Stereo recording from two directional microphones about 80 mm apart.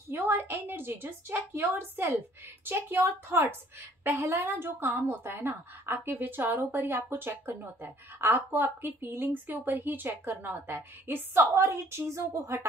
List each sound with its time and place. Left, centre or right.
0.1 s a woman's voice: right